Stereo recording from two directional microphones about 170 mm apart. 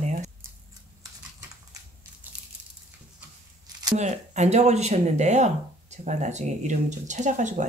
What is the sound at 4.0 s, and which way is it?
Speech, 40° right (ahead or behind).